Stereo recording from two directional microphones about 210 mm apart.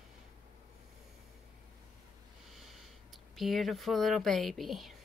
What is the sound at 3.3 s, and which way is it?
Speech, centre (ahead or behind).